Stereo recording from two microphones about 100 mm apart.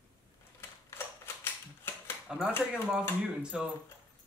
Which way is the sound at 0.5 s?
25° left (ahead or behind).